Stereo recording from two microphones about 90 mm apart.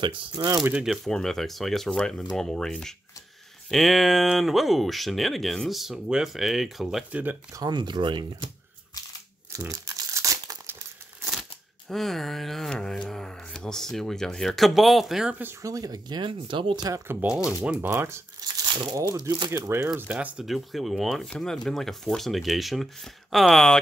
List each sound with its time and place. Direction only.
0.0 s speech: 65° right (ahead or behind)
0.8 s speech: 5° left (ahead or behind)
7.1 s speech: 15° right (ahead or behind)
7.7 s speech: 60° right (ahead or behind)
9.6 s crumpling: 35° right (ahead or behind)
11.9 s speech: 5° left (ahead or behind)
15.6 s speech: 40° right (ahead or behind); by 16.8 s 60° right (ahead or behind)
17.2 s speech: 20° right (ahead or behind)
18.7 s speech: 55° right (ahead or behind)
18.9 s speech: 40° right (ahead or behind)
19.6 s speech: 30° right (ahead or behind)
20.0 s speech: 15° right (ahead or behind)
20.4 s speech: centre (ahead or behind)